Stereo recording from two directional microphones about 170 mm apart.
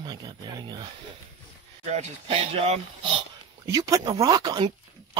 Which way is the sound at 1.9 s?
40° right (ahead or behind).